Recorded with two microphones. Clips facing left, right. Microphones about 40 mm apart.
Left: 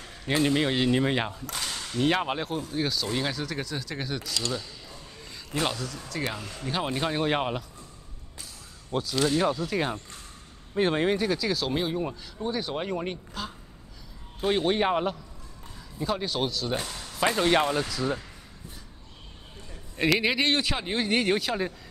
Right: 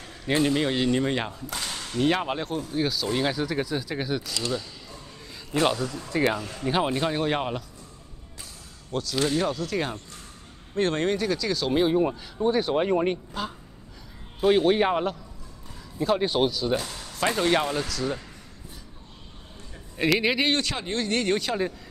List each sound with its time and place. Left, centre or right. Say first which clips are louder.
0.4 s speech: even; centre
1.6 s whip: right 2 dB; centre
5.5 s speech: right 5 dB; centre
6.9 s speech: right 1 dB; centre
9.1 s whip: even; centre
9.4 s speech: left 1 dB; centre
11.7 s speech: right 7 dB; centre
14.4 s whip: right 4 dB; centre
16.2 s speech: right 5 dB; centre
16.8 s whip: even; centre
20.0 s whip: right 1 dB; centre
20.6 s speech: even; centre